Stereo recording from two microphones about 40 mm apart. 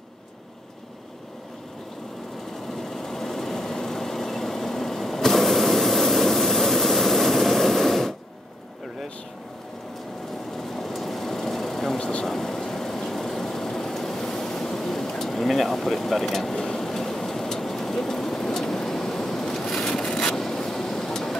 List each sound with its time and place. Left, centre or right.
2.7 s vehicle: centre
10.6 s vehicle: centre
12.0 s vehicle: left
12.3 s vehicle: centre